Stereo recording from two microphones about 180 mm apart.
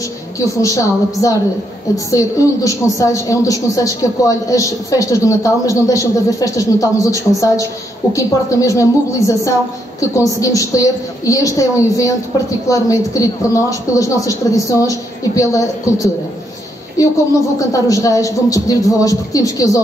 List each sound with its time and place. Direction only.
0.6 s a woman's voice: 20° left (ahead or behind)